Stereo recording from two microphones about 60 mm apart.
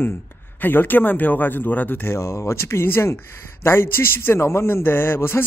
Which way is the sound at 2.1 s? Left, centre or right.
Left.